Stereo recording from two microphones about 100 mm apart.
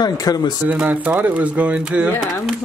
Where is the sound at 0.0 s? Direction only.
40° left (ahead or behind).